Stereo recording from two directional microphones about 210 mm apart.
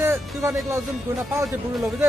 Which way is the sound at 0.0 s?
15° right (ahead or behind).